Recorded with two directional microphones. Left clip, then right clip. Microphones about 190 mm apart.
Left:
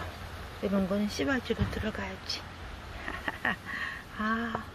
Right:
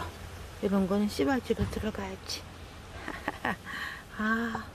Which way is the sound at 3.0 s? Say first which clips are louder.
Left 1 dB; 20° right (ahead or behind).